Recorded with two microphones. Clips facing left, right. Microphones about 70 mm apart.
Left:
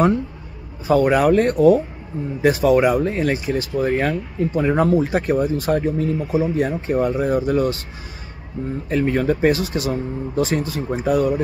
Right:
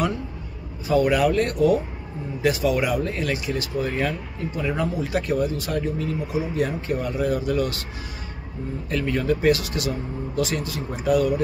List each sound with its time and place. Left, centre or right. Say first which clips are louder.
0.8 s speech: left 4 dB; left
8.8 s speech: left 5 dB; left